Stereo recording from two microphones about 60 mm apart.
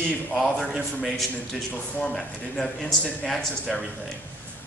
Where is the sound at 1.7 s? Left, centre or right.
Centre.